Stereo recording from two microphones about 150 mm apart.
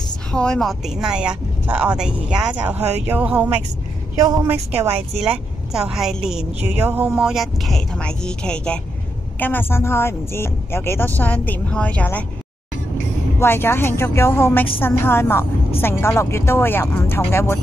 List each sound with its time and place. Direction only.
0.3 s speech: 5° left (ahead or behind); by 3.5 s 10° right (ahead or behind)
4.2 s a woman's voice: 25° right (ahead or behind)
5.2 s speech: 5° right (ahead or behind)
6.8 s speech: 15° right (ahead or behind)
7.1 s speech: 5° right (ahead or behind)
13.4 s speech: 15° left (ahead or behind)